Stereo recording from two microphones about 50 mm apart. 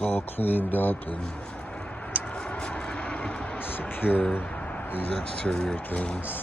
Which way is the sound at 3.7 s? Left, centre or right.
Left.